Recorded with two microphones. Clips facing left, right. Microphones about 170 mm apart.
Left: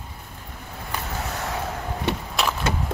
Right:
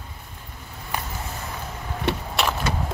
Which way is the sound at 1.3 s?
80° left.